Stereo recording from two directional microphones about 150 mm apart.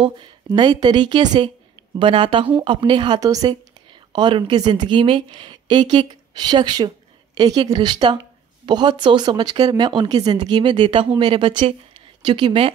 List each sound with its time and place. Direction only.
0.5 s speech: 30° right (ahead or behind)